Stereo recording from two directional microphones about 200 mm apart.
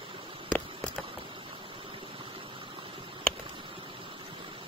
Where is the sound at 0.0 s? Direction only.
25° right (ahead or behind).